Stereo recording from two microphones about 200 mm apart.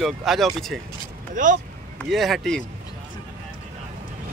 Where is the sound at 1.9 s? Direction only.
Centre (ahead or behind).